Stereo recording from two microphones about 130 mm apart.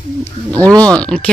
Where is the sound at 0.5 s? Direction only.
10° left (ahead or behind).